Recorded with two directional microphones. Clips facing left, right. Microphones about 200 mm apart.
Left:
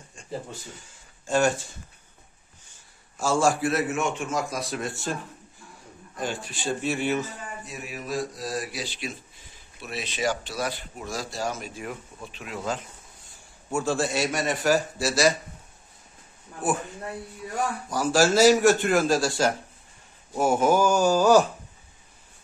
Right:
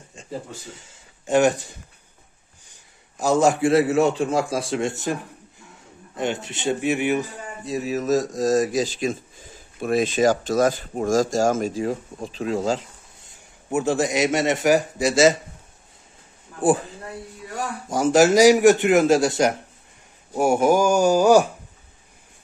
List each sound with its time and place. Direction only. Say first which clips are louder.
1.2 s a sound: right 5 dB; 20° right (ahead or behind)
3.2 s a man's voice: right 5 dB; 20° right (ahead or behind)
7.6 s speech: right 17 dB; 35° right (ahead or behind)
11.8 s speech: right 10 dB; 35° right (ahead or behind)
16.6 s a man's voice: right 7 dB; 30° right (ahead or behind)
20.3 s a sound: right 3 dB; 10° right (ahead or behind)